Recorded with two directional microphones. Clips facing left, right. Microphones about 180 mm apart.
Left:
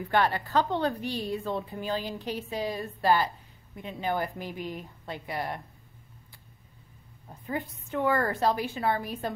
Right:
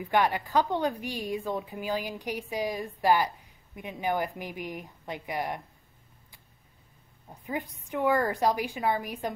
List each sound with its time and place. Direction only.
0.0 s a woman's voice: 15° right (ahead or behind)
7.2 s a woman's voice: 15° right (ahead or behind)